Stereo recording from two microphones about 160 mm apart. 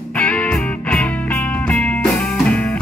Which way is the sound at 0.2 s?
10° left (ahead or behind).